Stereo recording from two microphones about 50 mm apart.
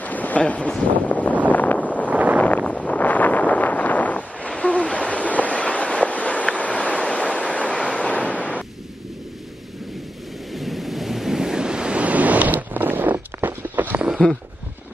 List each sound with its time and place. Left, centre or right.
0.0 s speech: left
1.5 s wind noise: left
2.0 s wind noise: right
2.4 s wind noise: left
4.5 s train: centre
8.1 s a sound: left
10.5 s waves: centre; by 14.0 s right